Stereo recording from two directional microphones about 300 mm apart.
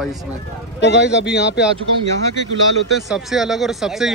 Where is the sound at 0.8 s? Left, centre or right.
Left.